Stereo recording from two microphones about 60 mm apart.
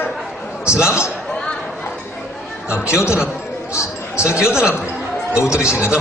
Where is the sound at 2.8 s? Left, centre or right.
Left.